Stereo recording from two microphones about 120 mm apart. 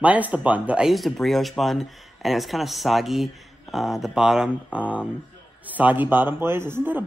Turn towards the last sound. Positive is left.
turn(degrees=-15)  # may be behind; listen again after turning